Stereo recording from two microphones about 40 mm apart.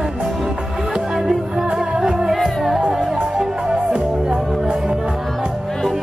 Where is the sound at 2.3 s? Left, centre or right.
Centre.